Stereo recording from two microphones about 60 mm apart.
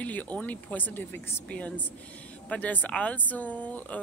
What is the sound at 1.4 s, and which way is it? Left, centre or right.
Speech, left.